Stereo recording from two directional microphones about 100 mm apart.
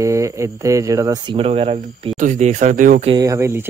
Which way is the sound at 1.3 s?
75° right (ahead or behind).